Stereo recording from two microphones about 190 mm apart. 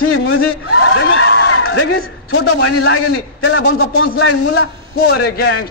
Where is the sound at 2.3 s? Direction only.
70° left (ahead or behind).